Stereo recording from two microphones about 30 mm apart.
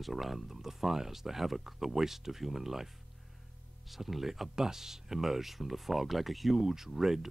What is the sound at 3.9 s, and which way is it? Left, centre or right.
Speech, centre.